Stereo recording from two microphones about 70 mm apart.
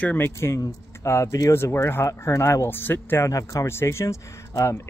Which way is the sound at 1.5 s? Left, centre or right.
Left.